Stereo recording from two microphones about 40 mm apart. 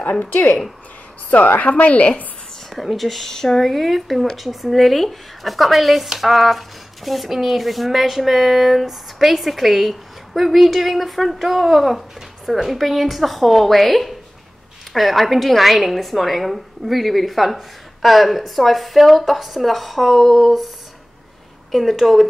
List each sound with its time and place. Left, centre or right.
0.2 s speech: left
1.6 s a woman's voice: left
2.7 s a woman's voice: centre
21.7 s a woman's voice: centre